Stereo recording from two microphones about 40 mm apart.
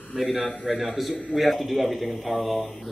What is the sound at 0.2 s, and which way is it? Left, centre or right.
A man's voice, centre.